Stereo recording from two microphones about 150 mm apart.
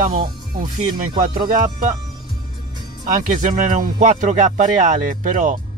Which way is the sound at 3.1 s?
60° right (ahead or behind).